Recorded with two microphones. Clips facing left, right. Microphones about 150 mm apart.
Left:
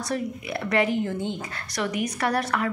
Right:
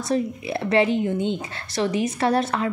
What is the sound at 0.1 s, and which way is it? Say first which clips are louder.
A woman's voice: right 6 dB; 25° right (ahead or behind).